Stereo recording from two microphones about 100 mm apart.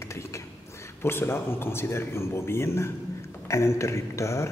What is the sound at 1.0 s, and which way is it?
A man's voice, 25° left (ahead or behind).